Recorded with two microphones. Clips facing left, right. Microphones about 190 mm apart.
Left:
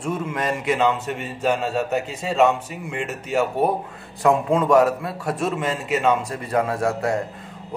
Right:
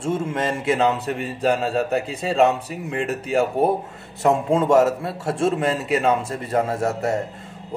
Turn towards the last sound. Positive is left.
turn(degrees=-25)  # may be behind; listen again after turning